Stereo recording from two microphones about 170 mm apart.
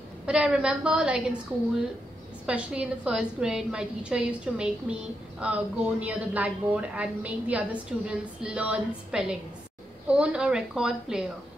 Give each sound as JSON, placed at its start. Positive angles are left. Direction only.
{"t": 0.3, "sound": "a woman's voice", "side_deg": -5}
{"t": 2.4, "sound": "a woman's voice", "side_deg": -5}